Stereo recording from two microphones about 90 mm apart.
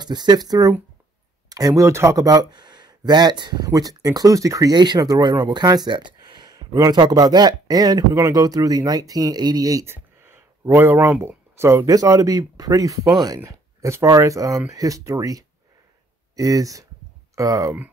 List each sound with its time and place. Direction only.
0.0 s speech: 50° right (ahead or behind)
4.7 s speech: 55° right (ahead or behind)
9.8 s speech: 25° right (ahead or behind); by 13.4 s 50° right (ahead or behind)
13.5 s speech: 35° right (ahead or behind)